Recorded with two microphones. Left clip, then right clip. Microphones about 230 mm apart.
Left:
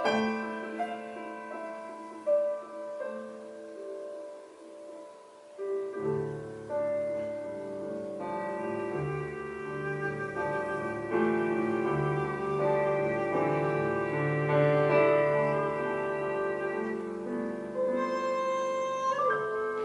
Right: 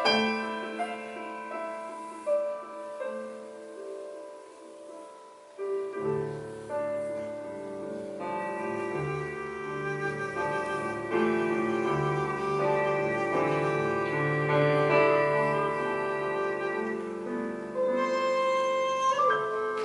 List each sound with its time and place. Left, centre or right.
0.0 s music: centre
5.9 s music: centre
8.2 s music: centre